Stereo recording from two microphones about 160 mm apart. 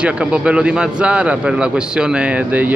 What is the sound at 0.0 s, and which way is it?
A man's voice, 5° right (ahead or behind).